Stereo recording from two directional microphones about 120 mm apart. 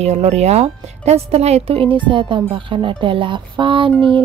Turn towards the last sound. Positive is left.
turn(degrees=-45)  # may be behind; listen again after turning